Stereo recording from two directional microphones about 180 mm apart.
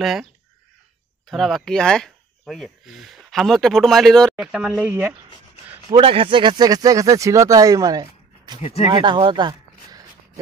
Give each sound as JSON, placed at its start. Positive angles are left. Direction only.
{"t": 0.0, "sound": "speech", "side_deg": 0}
{"t": 5.9, "sound": "speech", "side_deg": -30}
{"t": 8.5, "sound": "speech", "side_deg": 35}
{"t": 8.9, "sound": "a sound", "side_deg": -25}